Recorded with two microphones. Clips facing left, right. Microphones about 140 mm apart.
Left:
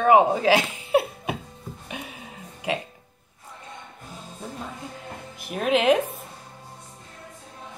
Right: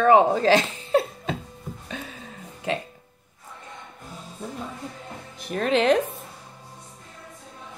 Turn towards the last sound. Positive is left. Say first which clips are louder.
# even
turn(degrees=10)  # may be behind; listen again after turning